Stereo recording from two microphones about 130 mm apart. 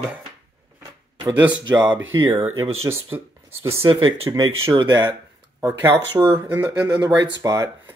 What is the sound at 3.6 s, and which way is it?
Speech, 45° right (ahead or behind).